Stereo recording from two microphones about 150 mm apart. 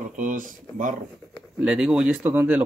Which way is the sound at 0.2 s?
60° right (ahead or behind).